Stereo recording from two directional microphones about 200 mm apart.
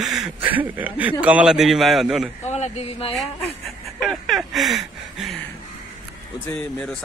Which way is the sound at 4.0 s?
Centre (ahead or behind).